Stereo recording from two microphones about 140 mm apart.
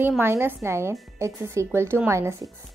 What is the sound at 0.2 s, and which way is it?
A woman's voice, 15° right (ahead or behind).